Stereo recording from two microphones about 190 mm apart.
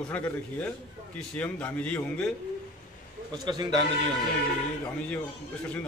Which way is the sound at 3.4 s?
25° right (ahead or behind).